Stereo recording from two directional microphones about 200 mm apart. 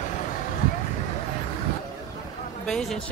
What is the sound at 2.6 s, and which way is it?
Speech, 5° left (ahead or behind).